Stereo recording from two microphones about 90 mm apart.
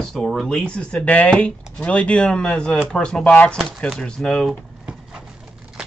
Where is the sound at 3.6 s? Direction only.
Centre (ahead or behind).